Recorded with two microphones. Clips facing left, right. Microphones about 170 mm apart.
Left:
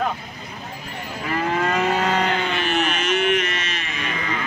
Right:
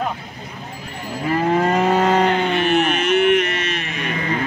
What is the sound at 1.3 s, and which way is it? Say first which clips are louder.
Cattle: right 5 dB; 35° right (ahead or behind).